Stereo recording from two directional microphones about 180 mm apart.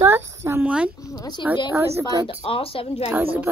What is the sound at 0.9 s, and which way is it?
Speech, 20° left (ahead or behind).